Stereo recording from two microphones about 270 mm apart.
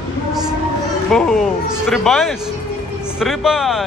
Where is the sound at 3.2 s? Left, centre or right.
Centre.